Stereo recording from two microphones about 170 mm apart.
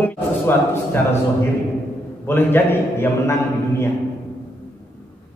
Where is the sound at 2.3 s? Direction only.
10° left (ahead or behind).